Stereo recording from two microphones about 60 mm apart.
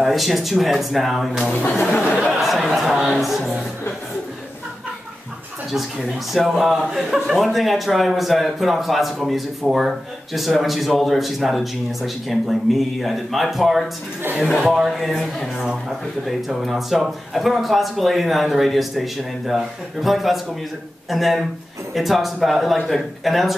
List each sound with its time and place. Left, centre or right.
0.0 s speech: centre
1.8 s speech: left
2.4 s a sound: centre
3.1 s speech: centre
6.3 s speech: centre
14.9 s speech: centre